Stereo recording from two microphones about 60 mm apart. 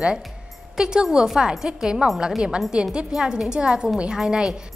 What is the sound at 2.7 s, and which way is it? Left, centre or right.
A woman's voice, centre.